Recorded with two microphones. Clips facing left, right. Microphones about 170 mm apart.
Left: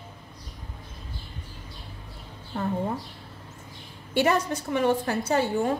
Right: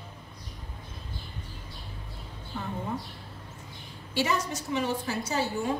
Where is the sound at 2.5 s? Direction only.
50° left (ahead or behind).